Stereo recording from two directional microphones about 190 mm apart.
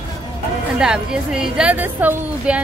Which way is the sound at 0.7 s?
5° right (ahead or behind).